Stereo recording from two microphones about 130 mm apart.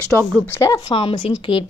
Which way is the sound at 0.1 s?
5° left (ahead or behind).